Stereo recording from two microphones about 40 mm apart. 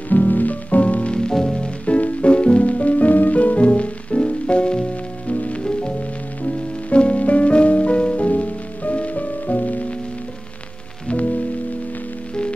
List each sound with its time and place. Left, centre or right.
0.1 s music: left; by 1.7 s centre
1.9 s music: left
5.3 s music: left
5.6 s music: left